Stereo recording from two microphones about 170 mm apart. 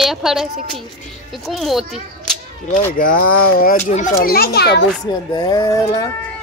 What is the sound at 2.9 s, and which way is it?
Speech, 55° left (ahead or behind).